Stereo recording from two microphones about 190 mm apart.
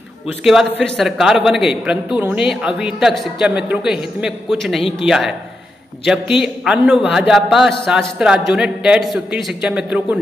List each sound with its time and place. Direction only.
0.4 s a man's voice: centre (ahead or behind)